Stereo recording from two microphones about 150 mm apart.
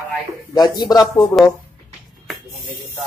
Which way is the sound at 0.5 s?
30° left (ahead or behind).